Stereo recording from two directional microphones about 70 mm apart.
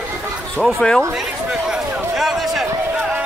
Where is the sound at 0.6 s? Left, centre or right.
Centre.